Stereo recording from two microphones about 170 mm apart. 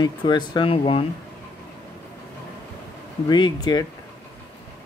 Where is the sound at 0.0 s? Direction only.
25° left (ahead or behind).